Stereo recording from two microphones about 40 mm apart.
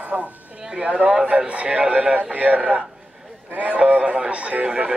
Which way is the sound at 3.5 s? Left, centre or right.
Right.